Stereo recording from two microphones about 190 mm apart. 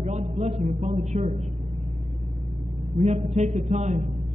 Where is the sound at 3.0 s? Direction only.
35° right (ahead or behind).